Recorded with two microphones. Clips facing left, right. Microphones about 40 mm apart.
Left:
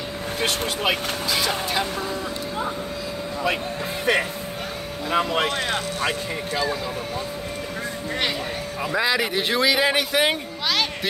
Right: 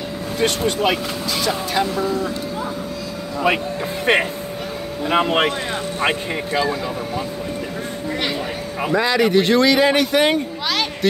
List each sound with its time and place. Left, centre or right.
0.4 s speech: centre
4.0 s speech: right
5.9 s speech: right
8.9 s speech: centre